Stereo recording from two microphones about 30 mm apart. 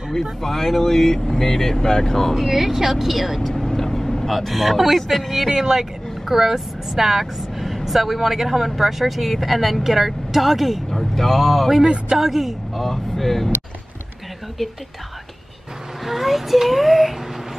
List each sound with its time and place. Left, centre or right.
0.1 s speech: centre
2.3 s speech: centre
3.6 s vehicle: centre
4.4 s speech: centre
5.5 s speech: centre
10.9 s speech: centre
12.2 s speech: centre
12.8 s speech: centre
16.1 s speech: centre